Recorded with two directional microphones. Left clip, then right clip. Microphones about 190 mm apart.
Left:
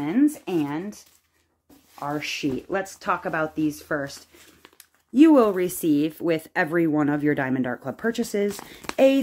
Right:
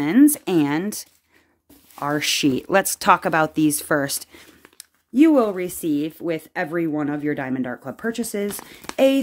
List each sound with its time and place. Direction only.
0.0 s speech: 45° right (ahead or behind)
5.1 s speech: 5° right (ahead or behind)